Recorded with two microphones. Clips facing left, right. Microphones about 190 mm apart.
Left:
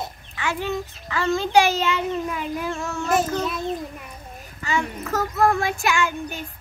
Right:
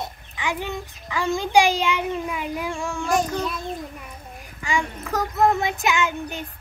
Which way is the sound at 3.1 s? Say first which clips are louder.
Left 1 dB; 5° left (ahead or behind).